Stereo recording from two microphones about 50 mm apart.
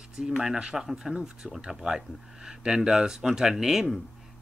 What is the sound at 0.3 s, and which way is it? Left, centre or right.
Speech, centre.